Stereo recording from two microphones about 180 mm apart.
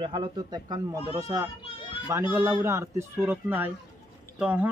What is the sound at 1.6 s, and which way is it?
Children playing, 30° left (ahead or behind).